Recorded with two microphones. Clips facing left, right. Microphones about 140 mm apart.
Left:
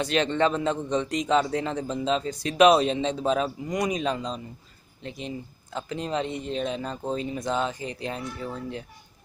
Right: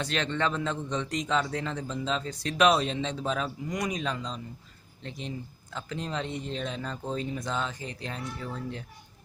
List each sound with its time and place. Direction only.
0.0 s a man's voice: 15° left (ahead or behind)